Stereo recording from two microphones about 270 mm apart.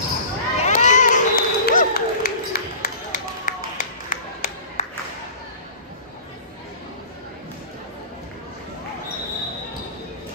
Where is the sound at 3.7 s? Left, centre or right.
Left.